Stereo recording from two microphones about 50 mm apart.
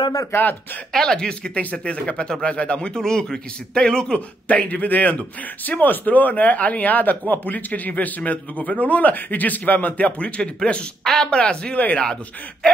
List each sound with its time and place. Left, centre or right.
0.3 s speech: left
0.9 s a man's voice: centre
4.5 s a man's voice: left